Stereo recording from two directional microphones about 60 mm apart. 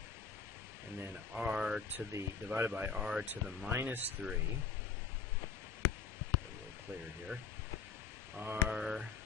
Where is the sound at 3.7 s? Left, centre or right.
Right.